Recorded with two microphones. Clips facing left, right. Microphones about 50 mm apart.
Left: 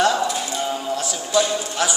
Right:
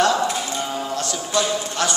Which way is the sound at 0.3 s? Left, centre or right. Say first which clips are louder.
Even; right.